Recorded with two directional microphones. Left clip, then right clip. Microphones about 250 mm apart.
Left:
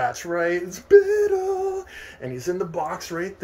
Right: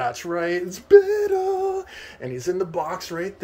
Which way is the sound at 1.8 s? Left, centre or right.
Centre.